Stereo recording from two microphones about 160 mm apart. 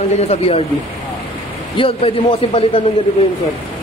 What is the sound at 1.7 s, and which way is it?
Speech, 35° left (ahead or behind).